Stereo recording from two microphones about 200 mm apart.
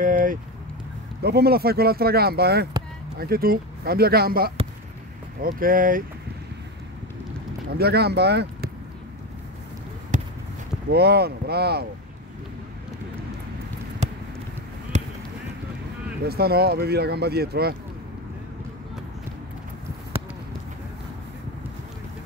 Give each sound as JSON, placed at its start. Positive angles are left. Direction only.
{"t": 0.0, "sound": "vehicle", "side_deg": -40}
{"t": 1.2, "sound": "speech", "side_deg": -55}
{"t": 7.7, "sound": "speech", "side_deg": -55}
{"t": 10.1, "sound": "basketball bounce", "side_deg": -40}
{"t": 10.9, "sound": "speech", "side_deg": -55}
{"t": 14.9, "sound": "basketball bounce", "side_deg": -35}
{"t": 16.3, "sound": "speech", "side_deg": -50}